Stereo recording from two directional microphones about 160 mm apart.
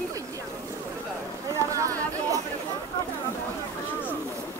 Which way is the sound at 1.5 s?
20° right (ahead or behind).